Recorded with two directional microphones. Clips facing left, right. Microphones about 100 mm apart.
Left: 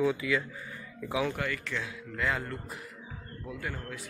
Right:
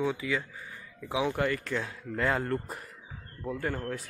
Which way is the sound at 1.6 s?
40° right (ahead or behind).